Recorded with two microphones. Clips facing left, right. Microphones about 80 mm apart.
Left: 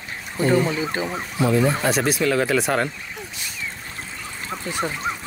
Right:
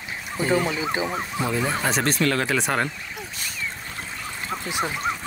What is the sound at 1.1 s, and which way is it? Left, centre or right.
Speech, centre.